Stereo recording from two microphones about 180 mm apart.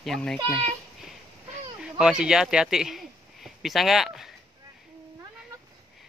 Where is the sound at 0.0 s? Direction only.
Centre (ahead or behind).